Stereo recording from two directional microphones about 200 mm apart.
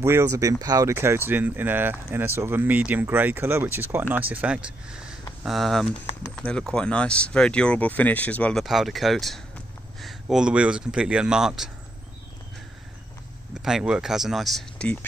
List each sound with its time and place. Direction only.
0.0 s speech: 15° right (ahead or behind)
13.6 s speech: centre (ahead or behind)